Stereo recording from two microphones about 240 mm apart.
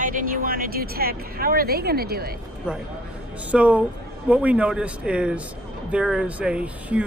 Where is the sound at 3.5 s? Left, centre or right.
Centre.